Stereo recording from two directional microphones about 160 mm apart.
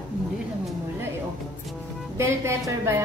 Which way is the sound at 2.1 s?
15° right (ahead or behind).